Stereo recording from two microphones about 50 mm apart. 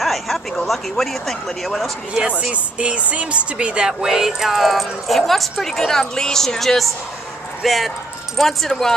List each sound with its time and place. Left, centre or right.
0.0 s a sound: centre
0.7 s a woman's voice: centre
2.5 s a woman's voice: right
4.0 s a woman's voice: centre